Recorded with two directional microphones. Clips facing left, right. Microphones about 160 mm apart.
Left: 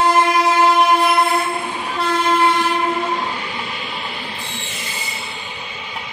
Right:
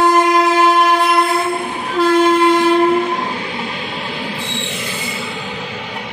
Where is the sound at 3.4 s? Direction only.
70° right (ahead or behind).